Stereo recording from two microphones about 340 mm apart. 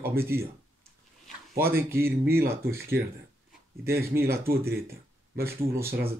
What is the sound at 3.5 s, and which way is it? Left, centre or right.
Speech, centre.